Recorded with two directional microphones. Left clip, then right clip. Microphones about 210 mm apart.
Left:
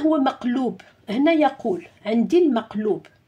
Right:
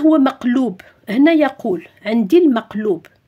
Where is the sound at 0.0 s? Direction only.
40° right (ahead or behind).